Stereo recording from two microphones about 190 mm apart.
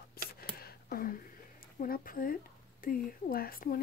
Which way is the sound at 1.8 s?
45° left (ahead or behind).